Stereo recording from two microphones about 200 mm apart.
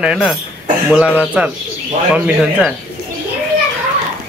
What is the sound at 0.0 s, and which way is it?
Speech, centre (ahead or behind).